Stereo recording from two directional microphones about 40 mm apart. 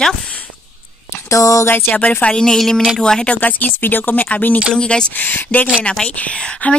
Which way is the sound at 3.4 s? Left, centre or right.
Left.